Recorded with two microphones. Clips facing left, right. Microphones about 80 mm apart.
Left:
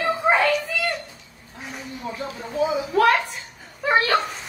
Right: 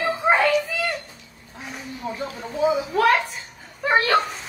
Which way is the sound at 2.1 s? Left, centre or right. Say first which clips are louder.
Left 4 dB; right.